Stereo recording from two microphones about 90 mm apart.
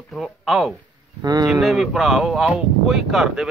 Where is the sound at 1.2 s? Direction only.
45° right (ahead or behind).